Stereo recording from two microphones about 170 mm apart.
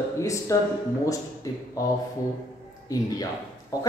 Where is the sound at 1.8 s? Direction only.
20° left (ahead or behind).